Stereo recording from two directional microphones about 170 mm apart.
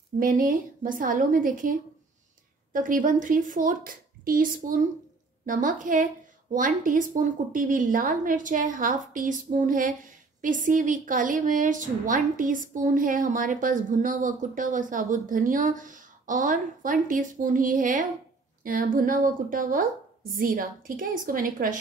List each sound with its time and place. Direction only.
0.2 s a woman's voice: 55° right (ahead or behind)